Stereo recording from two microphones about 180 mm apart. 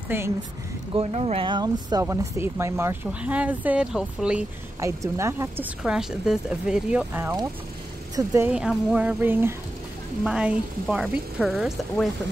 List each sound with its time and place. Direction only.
0.1 s speech: 10° right (ahead or behind)
0.9 s speech: 35° right (ahead or behind); by 4.5 s 5° right (ahead or behind)
4.7 s speech: 15° right (ahead or behind)
5.8 s speech: 5° right (ahead or behind)